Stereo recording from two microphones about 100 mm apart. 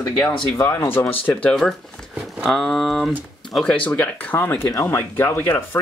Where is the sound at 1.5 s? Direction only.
5° left (ahead or behind).